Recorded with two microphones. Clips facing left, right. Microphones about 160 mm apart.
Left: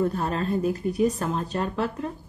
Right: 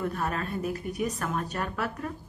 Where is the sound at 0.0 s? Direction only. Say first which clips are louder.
Left 5 dB; 30° left (ahead or behind).